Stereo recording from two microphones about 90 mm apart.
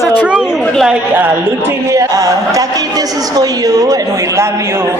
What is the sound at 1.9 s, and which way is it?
A woman's voice, 35° right (ahead or behind).